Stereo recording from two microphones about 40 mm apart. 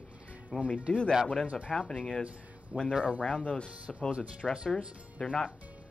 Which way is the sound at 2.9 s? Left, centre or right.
Right.